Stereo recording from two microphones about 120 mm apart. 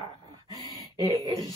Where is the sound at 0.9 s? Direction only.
30° right (ahead or behind).